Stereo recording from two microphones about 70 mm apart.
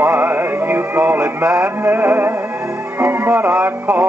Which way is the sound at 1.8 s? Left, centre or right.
Right.